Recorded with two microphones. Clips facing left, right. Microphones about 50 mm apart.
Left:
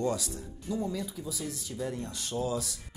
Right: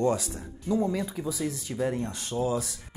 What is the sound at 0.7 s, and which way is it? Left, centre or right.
Speech, right.